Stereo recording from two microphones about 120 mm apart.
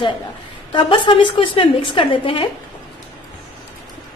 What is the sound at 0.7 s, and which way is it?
A woman's voice, 45° left (ahead or behind).